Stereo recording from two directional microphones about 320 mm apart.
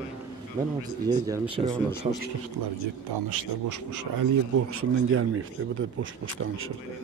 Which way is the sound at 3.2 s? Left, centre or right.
Right.